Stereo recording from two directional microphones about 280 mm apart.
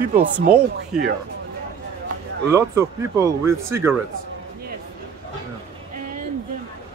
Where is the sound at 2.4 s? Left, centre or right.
Centre.